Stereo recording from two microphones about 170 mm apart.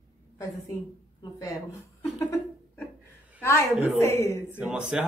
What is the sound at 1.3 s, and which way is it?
Speech, 20° left (ahead or behind).